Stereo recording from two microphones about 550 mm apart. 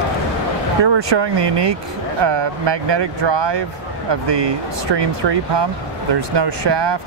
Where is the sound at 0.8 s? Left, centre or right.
Right.